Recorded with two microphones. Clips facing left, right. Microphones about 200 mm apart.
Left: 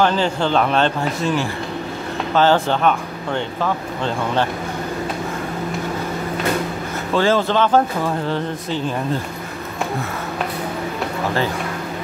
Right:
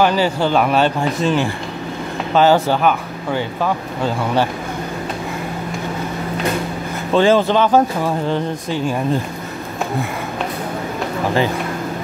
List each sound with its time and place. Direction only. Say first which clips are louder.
0.0 s speech: right 2 dB; 10° right (ahead or behind)
7.2 s speech: right 3 dB; 15° right (ahead or behind)